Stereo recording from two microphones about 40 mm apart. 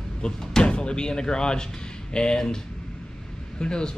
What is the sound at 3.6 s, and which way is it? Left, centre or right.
Speech, left.